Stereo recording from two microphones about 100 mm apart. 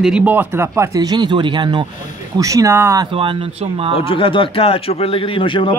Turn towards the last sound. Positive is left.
turn(degrees=55)  # may be behind; listen again after turning